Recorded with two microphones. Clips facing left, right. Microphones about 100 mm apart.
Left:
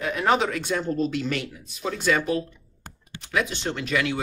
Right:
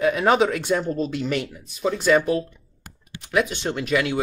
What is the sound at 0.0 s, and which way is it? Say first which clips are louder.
A woman's voice: right 4 dB; 15° right (ahead or behind).